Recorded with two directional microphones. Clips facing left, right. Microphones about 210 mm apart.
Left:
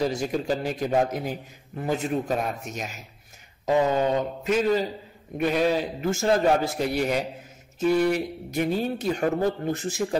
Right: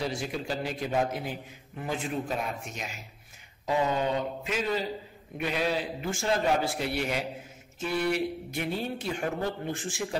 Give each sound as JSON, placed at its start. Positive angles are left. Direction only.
{"t": 0.0, "sound": "a man's voice", "side_deg": 40}